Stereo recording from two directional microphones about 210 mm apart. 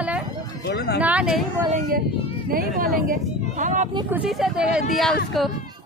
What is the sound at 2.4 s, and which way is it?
Speech, 45° right (ahead or behind).